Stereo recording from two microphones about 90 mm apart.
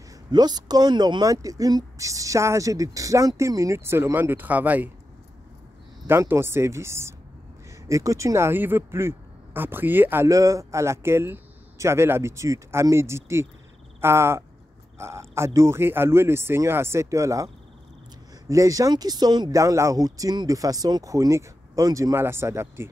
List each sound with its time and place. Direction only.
0.3 s speech: 50° right (ahead or behind); by 4.9 s 20° right (ahead or behind)
6.0 s speech: 25° right (ahead or behind)
10.2 s speech: 35° right (ahead or behind)
18.5 s speech: 40° right (ahead or behind)
19.6 s speech: 35° right (ahead or behind)
22.1 s speech: 25° right (ahead or behind)